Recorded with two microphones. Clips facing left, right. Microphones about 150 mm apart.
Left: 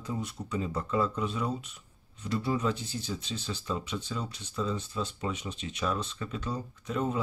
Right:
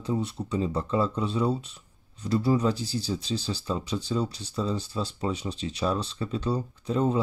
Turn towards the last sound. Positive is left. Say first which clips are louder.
# right 6 dB
turn(degrees=-30)  # may be behind; listen again after turning